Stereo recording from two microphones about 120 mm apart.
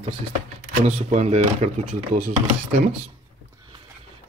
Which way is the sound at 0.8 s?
70° right (ahead or behind).